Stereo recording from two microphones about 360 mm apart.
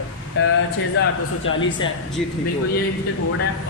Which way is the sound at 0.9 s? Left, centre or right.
Left.